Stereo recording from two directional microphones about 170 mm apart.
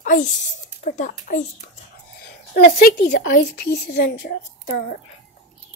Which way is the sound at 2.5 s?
70° left (ahead or behind).